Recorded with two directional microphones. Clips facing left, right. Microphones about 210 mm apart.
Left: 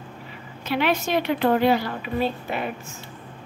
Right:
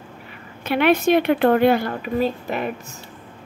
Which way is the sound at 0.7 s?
55° right (ahead or behind).